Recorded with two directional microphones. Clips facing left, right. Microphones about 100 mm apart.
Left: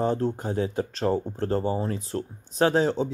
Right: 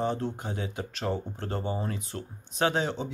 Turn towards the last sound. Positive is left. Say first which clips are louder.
# left 6 dB
turn(degrees=40)  # may be behind; listen again after turning